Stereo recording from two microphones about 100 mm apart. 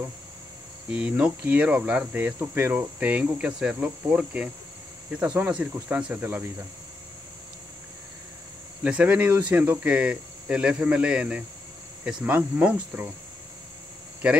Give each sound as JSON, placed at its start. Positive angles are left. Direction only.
{"t": 0.8, "sound": "speech", "side_deg": -10}
{"t": 8.8, "sound": "speech", "side_deg": -15}